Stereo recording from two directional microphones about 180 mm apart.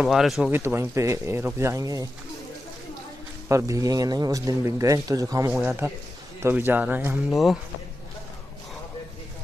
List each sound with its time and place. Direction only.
0.0 s speech: centre (ahead or behind)
0.6 s speech: 15° right (ahead or behind)
3.4 s a man's voice: 20° right (ahead or behind); by 7.5 s centre (ahead or behind)